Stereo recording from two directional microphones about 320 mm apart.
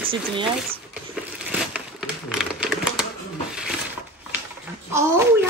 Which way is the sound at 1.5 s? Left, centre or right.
Centre.